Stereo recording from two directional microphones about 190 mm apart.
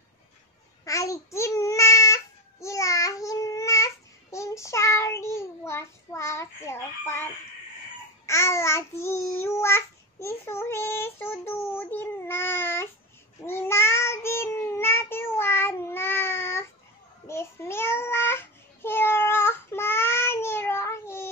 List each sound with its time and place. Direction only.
0.8 s babbling: 15° left (ahead or behind)
8.3 s babbling: 15° left (ahead or behind)
13.5 s child singing: 10° left (ahead or behind)